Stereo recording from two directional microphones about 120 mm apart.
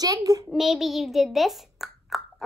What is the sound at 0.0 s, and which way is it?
Speech, 30° right (ahead or behind).